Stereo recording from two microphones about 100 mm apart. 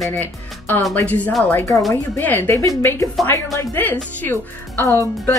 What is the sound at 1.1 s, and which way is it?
Speech, 15° left (ahead or behind).